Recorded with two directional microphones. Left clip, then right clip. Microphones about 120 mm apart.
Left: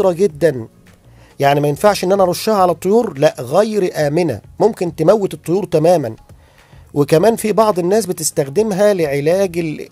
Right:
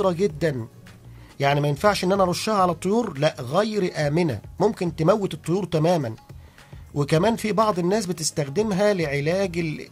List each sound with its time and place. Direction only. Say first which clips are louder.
0.0 s speech: left 9 dB; 35° left (ahead or behind)